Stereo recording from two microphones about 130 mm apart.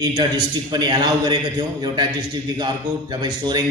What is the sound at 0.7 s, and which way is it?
Speech, 35° right (ahead or behind).